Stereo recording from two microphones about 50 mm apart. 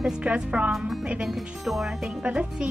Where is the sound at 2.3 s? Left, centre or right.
Right.